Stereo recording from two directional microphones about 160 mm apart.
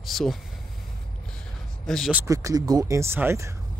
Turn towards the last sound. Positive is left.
turn(degrees=-15)  # may be behind; listen again after turning